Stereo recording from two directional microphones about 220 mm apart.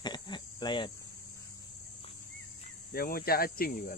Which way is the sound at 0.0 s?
20° left (ahead or behind).